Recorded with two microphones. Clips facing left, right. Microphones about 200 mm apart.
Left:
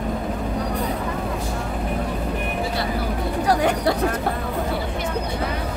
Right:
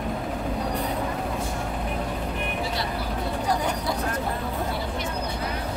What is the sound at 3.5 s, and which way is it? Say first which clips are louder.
Vehicle: left 8 dB; 80° left.